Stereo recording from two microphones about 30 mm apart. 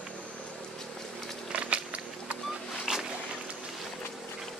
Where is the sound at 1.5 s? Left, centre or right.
Right.